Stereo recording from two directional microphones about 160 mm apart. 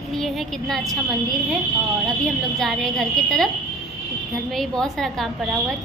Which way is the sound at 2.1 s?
Centre (ahead or behind).